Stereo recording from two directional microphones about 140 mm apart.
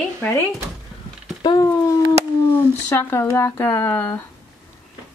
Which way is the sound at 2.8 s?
15° left (ahead or behind).